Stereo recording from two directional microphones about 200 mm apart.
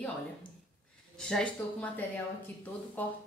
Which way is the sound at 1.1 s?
5° left (ahead or behind).